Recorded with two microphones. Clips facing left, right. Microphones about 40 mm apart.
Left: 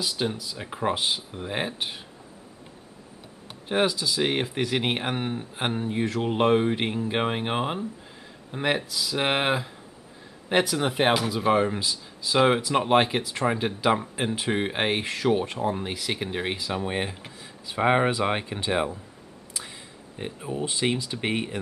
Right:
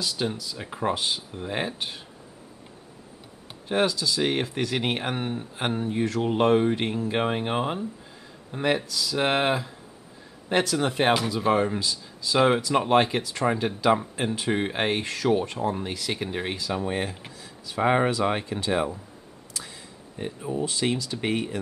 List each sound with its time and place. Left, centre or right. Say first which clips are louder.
0.0 s speech: even; centre
3.6 s speech: even; centre
20.2 s speech: right 2 dB; left